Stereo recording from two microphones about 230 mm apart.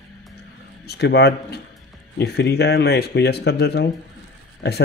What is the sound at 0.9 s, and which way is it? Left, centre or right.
Speech, left.